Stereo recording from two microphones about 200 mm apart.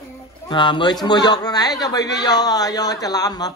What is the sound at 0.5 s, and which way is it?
A man's voice, 25° left (ahead or behind).